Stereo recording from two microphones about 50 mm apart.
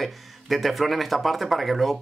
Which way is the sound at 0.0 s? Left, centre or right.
Centre.